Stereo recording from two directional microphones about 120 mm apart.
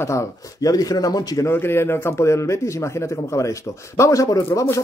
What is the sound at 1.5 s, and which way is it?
A man's voice, 20° left (ahead or behind).